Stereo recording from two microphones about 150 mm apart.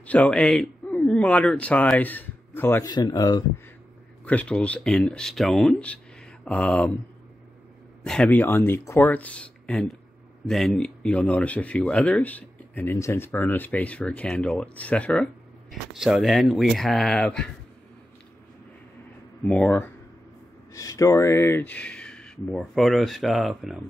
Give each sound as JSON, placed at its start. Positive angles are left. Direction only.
{"t": 0.0, "sound": "speech", "side_deg": 10}
{"t": 2.9, "sound": "speech", "side_deg": 25}
{"t": 4.2, "sound": "speech", "side_deg": 10}
{"t": 8.0, "sound": "speech", "side_deg": 5}
{"t": 15.7, "sound": "speech", "side_deg": -5}
{"t": 19.4, "sound": "speech", "side_deg": 5}
{"t": 20.7, "sound": "speech", "side_deg": 20}